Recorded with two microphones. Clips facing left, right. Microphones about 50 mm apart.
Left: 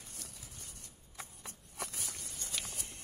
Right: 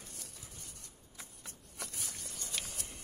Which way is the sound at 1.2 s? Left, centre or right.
Left.